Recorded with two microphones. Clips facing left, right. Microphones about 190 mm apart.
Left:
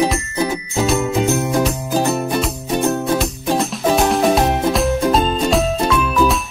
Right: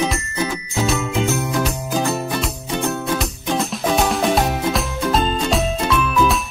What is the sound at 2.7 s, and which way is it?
Music, 25° left (ahead or behind).